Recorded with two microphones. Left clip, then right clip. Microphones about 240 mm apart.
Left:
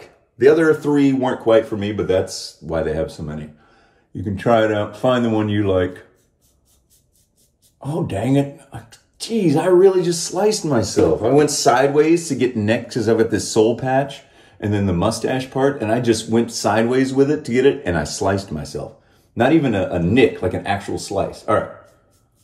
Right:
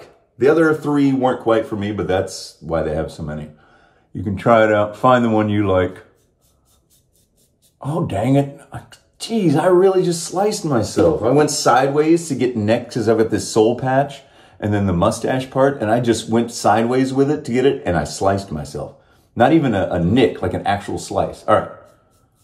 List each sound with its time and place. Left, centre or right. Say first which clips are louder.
0.4 s speech: left 1 dB; centre
7.8 s speech: right 2 dB; centre